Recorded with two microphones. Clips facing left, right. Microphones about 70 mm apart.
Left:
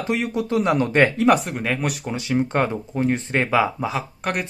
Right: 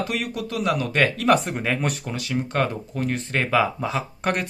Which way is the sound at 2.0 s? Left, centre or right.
Left.